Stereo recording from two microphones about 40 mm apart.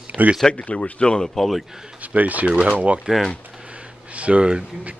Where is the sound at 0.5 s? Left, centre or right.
Left.